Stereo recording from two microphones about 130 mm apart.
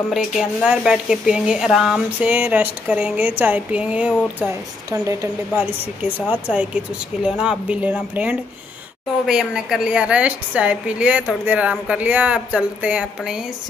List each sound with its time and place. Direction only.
0.1 s a woman's voice: 5° right (ahead or behind)
4.9 s speech: 25° right (ahead or behind)
6.3 s a woman's voice: 10° right (ahead or behind)